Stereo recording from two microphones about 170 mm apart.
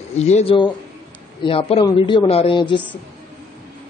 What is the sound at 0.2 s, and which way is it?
Speech, 40° left (ahead or behind).